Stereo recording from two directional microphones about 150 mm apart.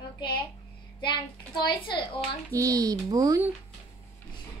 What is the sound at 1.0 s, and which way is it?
A child's voice, 30° left (ahead or behind).